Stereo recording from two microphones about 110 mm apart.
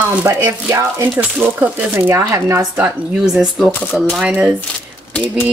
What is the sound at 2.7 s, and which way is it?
Speech, 10° right (ahead or behind).